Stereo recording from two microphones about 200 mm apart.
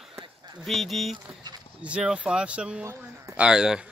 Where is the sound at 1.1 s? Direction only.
20° right (ahead or behind).